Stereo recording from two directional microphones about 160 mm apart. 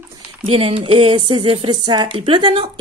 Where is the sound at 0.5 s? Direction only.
35° right (ahead or behind).